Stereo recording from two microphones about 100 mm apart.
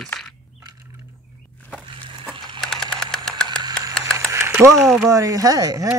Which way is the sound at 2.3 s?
55° right (ahead or behind).